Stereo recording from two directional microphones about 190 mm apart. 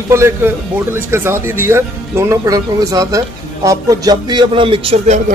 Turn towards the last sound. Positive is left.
turn(degrees=-30)  # may be behind; listen again after turning